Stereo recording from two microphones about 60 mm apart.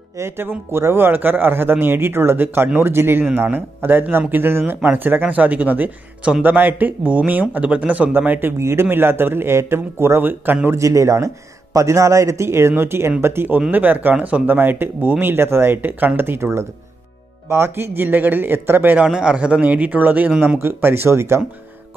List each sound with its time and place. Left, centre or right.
0.2 s a man's voice: right
8.4 s a man's voice: right
10.7 s a man's voice: right
19.0 s speech: centre; by 20.3 s right
20.6 s speech: right